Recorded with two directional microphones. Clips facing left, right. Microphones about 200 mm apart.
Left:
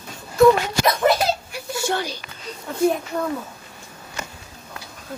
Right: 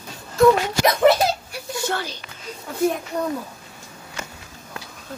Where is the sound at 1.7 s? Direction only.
10° left (ahead or behind).